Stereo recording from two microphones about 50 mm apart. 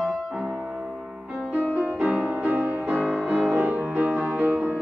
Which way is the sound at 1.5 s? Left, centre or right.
Right.